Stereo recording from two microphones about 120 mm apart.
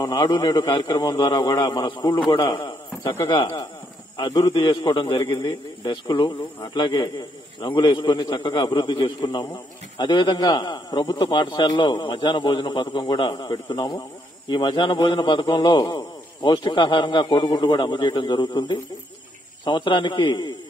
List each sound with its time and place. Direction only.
0.0 s a man's voice: 40° left (ahead or behind)
4.2 s a man's voice: 30° left (ahead or behind)